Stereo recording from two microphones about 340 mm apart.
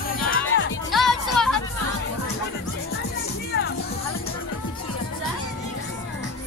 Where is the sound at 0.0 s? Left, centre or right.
Left.